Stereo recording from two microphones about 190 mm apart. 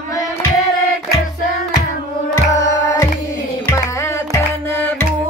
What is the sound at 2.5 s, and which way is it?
Music, 15° left (ahead or behind).